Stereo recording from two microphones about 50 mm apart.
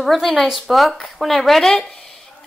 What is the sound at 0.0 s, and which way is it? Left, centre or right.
Speech, centre.